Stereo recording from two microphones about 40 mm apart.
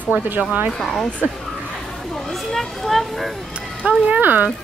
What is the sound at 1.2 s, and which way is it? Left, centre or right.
Speech, right.